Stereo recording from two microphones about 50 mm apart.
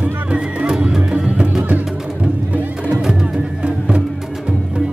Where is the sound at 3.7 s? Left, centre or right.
Centre.